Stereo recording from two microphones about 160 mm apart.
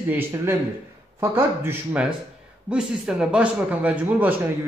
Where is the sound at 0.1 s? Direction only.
15° right (ahead or behind).